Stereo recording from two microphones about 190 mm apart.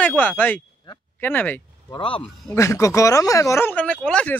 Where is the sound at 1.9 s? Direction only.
25° left (ahead or behind).